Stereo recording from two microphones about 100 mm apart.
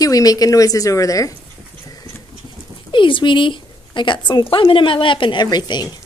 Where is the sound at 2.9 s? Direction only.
55° left (ahead or behind).